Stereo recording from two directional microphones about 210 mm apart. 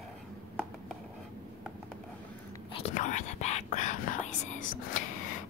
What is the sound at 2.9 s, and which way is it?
Whispering, 35° left (ahead or behind).